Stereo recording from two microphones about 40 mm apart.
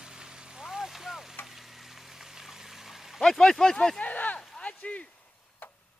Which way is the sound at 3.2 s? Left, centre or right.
Centre.